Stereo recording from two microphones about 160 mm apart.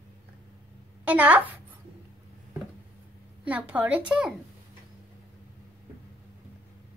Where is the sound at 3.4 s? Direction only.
10° right (ahead or behind).